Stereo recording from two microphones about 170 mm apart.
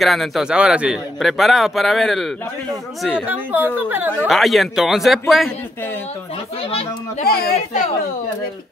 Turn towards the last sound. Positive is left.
turn(degrees=60)  # may be behind; listen again after turning